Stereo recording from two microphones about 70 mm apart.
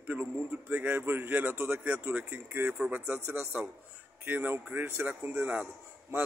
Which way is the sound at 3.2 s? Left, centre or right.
Right.